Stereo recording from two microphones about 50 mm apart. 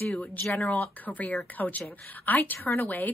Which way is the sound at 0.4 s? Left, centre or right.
Left.